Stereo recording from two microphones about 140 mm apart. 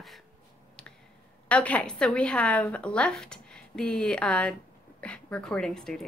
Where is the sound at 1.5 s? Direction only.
10° left (ahead or behind).